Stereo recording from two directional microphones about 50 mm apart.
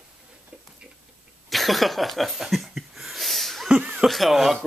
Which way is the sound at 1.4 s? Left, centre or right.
Centre.